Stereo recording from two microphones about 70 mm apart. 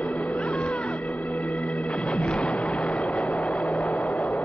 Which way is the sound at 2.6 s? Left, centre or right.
Centre.